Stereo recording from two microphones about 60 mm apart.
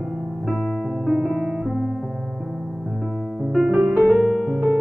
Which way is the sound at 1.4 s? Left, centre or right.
Centre.